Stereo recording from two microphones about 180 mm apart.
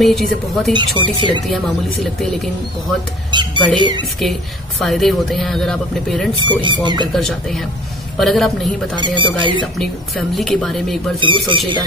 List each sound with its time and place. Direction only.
0.0 s speech: centre (ahead or behind)
0.7 s speech: 25° right (ahead or behind)
1.5 s speech: centre (ahead or behind)
3.3 s speech: 25° right (ahead or behind)
4.2 s speech: centre (ahead or behind)
6.3 s speech: 25° right (ahead or behind)
7.1 s speech: centre (ahead or behind)
8.9 s speech: 25° right (ahead or behind)
10.3 s speech: centre (ahead or behind)
11.1 s speech: 25° right (ahead or behind)